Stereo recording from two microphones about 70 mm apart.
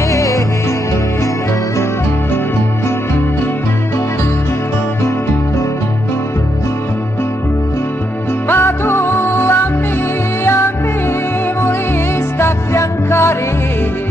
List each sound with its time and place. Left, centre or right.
0.1 s music: left
8.5 s music: left
12.4 s music: left